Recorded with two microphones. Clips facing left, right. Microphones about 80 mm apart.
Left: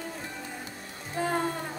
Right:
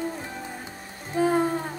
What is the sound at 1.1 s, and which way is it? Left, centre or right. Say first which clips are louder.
Music: right 6 dB; centre.